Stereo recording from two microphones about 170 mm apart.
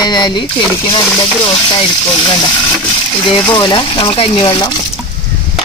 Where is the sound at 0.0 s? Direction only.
25° left (ahead or behind).